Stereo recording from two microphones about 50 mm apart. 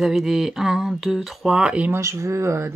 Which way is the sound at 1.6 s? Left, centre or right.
Right.